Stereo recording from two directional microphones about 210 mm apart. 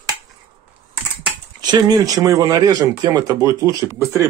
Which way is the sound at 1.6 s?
20° right (ahead or behind).